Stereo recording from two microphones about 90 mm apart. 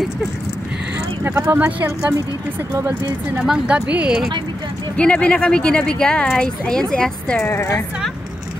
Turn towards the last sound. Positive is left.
turn(degrees=35)  # may be behind; listen again after turning